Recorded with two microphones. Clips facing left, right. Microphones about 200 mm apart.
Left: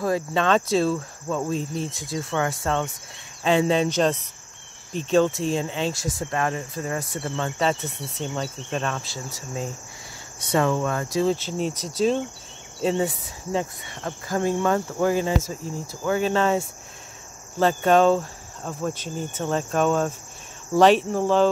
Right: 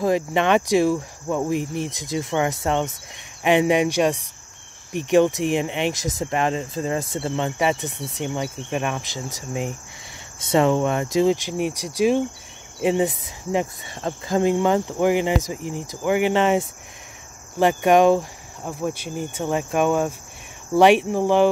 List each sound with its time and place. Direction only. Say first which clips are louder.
0.0 s speech: right 3 dB; 20° right (ahead or behind)